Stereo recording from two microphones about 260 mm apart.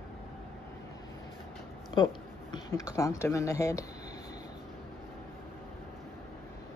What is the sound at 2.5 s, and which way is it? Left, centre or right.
Speech, centre.